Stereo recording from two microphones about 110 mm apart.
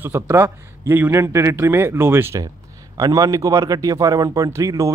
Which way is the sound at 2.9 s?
35° right (ahead or behind).